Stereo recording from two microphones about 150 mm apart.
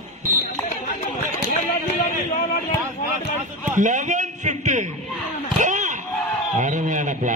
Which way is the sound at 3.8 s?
55° right (ahead or behind).